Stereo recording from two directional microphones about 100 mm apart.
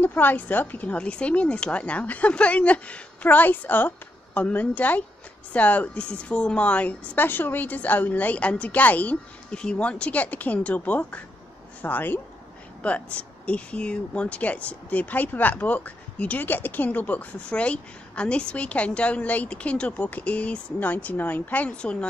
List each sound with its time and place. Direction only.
0.0 s speech: 20° left (ahead or behind)